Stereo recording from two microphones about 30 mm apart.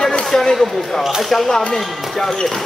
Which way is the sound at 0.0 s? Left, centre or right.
Left.